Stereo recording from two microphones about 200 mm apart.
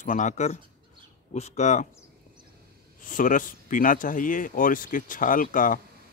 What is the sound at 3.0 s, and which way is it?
Speech, 40° left (ahead or behind).